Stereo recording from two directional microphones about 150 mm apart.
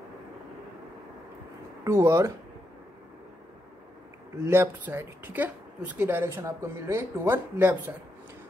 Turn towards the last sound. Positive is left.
turn(degrees=-10)  # may be behind; listen again after turning